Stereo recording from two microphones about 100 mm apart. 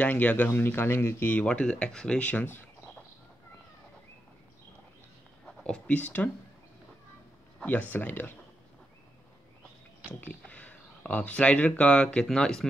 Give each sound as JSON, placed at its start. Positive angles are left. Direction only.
{"t": 0.0, "sound": "speech", "side_deg": 15}
{"t": 5.6, "sound": "speech", "side_deg": 15}
{"t": 7.9, "sound": "speech", "side_deg": 20}
{"t": 10.2, "sound": "speech", "side_deg": 15}